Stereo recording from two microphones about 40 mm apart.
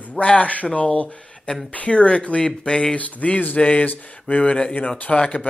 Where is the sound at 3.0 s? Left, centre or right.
Left.